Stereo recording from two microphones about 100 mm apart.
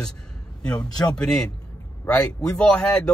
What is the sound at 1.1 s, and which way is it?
Speech, 10° left (ahead or behind).